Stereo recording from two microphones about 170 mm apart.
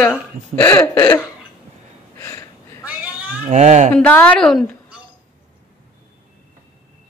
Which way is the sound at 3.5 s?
40° right (ahead or behind).